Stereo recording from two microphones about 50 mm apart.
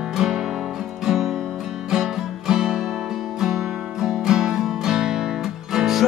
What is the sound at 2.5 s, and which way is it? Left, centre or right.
Music, centre.